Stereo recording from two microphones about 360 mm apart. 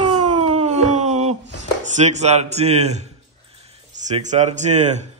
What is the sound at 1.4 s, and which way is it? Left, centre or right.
Speech, centre.